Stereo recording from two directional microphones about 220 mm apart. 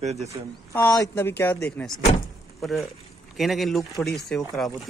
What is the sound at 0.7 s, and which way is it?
Speech, 15° left (ahead or behind).